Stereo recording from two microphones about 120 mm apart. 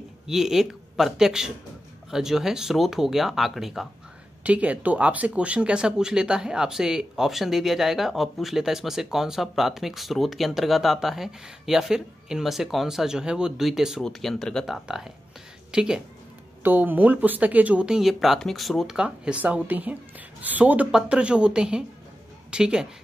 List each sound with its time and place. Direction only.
0.3 s speech: 5° right (ahead or behind)